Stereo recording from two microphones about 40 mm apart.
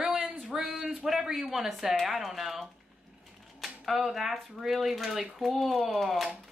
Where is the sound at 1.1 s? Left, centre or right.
Centre.